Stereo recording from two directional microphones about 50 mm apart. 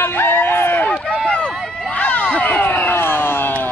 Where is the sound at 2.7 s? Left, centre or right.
Left.